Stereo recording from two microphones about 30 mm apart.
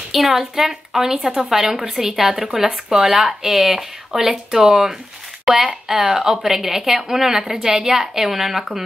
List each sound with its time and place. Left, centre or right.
0.1 s a woman's voice: centre
1.9 s speech: right
2.1 s speech: centre
4.5 s a woman's voice: right